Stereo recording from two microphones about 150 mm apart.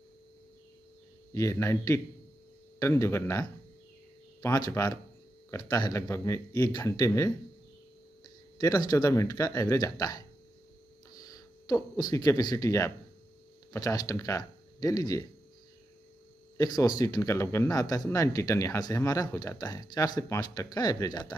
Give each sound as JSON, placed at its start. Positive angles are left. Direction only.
{"t": 1.3, "sound": "speech", "side_deg": 20}
{"t": 8.5, "sound": "speech", "side_deg": 25}
{"t": 16.5, "sound": "speech", "side_deg": 25}